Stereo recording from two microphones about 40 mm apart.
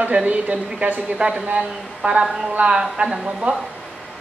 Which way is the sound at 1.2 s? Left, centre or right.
Right.